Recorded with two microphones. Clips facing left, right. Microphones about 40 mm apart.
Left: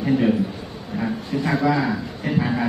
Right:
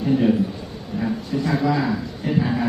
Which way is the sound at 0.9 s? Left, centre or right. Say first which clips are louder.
Even; centre.